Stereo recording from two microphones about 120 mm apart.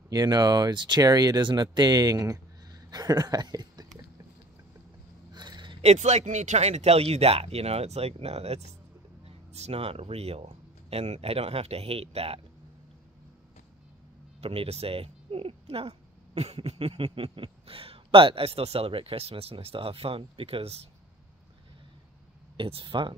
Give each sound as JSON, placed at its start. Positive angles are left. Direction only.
{"t": 0.1, "sound": "speech", "side_deg": -35}
{"t": 5.3, "sound": "a sound", "side_deg": -35}
{"t": 5.8, "sound": "speech", "side_deg": -65}
{"t": 14.4, "sound": "speech", "side_deg": -55}
{"t": 22.6, "sound": "speech", "side_deg": -45}